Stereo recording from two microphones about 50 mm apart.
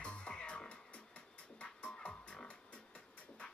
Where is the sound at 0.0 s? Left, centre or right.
Left.